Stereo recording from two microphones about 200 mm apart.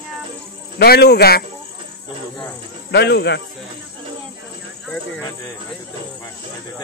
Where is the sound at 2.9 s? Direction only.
55° left (ahead or behind).